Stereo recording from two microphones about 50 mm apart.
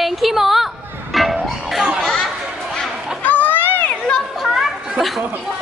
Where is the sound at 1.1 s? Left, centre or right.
Centre.